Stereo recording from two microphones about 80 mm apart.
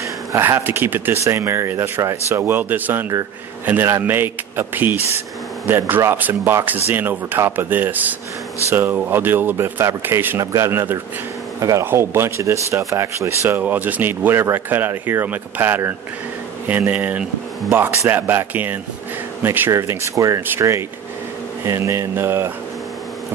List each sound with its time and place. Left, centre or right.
0.4 s a man's voice: right
10.4 s speech: right
13.6 s a man's voice: right
19.7 s speech: right